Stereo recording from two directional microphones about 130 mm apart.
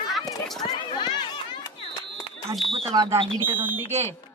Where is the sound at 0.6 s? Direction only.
35° left (ahead or behind).